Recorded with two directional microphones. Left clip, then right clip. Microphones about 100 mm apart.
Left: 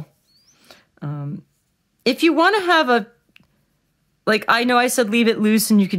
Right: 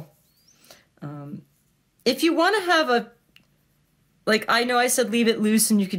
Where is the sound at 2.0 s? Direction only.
50° left (ahead or behind).